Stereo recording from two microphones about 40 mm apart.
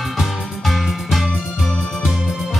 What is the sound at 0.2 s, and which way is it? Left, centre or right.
Music, centre.